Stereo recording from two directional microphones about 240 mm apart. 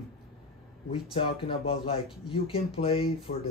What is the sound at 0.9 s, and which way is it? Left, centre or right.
Speech, left.